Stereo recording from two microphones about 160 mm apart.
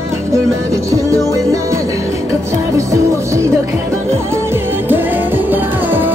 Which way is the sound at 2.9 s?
20° right (ahead or behind).